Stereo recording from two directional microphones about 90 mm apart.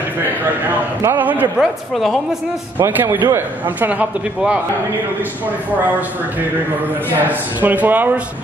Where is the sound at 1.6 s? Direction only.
Centre (ahead or behind).